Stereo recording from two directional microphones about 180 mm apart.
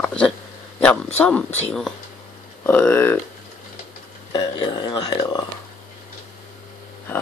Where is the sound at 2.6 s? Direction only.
10° left (ahead or behind).